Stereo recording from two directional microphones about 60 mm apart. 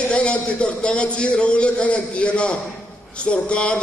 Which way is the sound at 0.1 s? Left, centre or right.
Centre.